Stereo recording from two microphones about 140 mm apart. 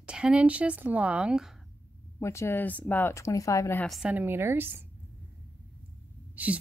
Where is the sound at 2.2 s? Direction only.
20° left (ahead or behind).